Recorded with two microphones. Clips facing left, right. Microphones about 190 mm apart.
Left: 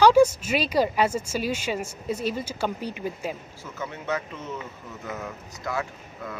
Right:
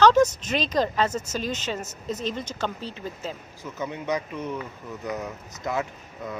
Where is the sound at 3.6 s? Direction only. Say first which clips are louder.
Right 3 dB; 15° right (ahead or behind).